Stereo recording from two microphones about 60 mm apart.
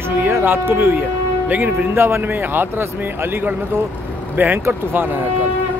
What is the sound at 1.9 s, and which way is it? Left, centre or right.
Speech, right.